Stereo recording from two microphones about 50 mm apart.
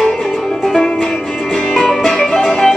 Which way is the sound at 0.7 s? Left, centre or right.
Centre.